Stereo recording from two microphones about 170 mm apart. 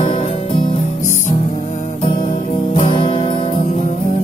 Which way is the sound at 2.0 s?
30° left (ahead or behind).